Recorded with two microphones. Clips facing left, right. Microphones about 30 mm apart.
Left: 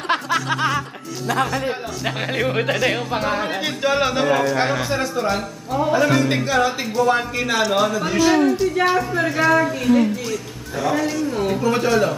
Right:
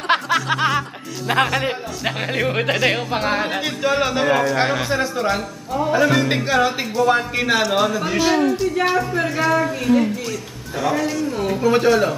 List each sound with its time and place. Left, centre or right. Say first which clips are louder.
0.3 s a sound: right 2 dB; centre
1.2 s speech: right 3 dB; right
2.0 s speech: right 1 dB; centre
3.6 s speech: left 3 dB; centre
6.9 s speech: right 1 dB; centre
7.3 s speech: right 2 dB; centre
7.6 s speech: even; centre